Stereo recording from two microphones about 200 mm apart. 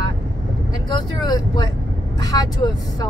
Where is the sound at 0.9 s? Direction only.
20° left (ahead or behind).